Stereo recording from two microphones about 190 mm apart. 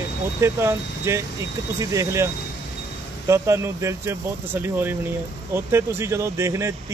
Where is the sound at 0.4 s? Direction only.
15° right (ahead or behind).